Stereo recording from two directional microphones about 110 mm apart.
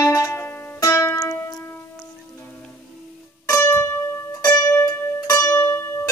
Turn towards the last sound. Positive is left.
turn(degrees=20)  # may be behind; listen again after turning